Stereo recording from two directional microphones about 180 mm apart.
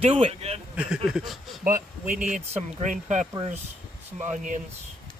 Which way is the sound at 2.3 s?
45° right (ahead or behind).